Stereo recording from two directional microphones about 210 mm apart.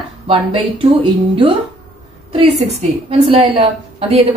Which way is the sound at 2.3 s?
30° right (ahead or behind).